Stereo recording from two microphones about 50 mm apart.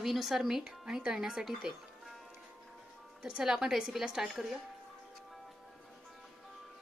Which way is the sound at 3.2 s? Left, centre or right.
Centre.